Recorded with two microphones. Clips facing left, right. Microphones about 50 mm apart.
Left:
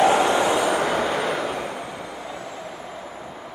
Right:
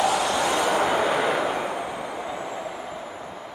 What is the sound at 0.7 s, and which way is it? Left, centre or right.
Vehicle, centre.